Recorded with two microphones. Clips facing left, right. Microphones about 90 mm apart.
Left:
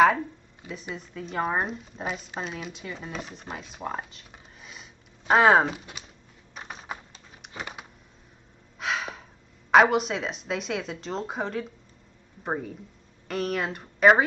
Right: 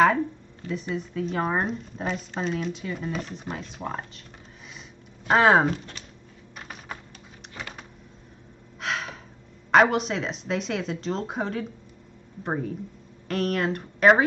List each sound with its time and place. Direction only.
0.0 s speech: 10° left (ahead or behind)
5.3 s speech: centre (ahead or behind)
6.6 s typing: 15° left (ahead or behind)
7.5 s a sound: 15° left (ahead or behind)
8.7 s gasp: centre (ahead or behind)
9.7 s speech: centre (ahead or behind)